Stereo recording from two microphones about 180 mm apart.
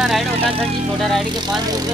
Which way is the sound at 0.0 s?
Centre (ahead or behind).